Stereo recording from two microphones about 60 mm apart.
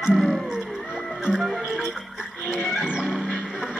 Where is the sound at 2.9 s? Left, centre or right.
Centre.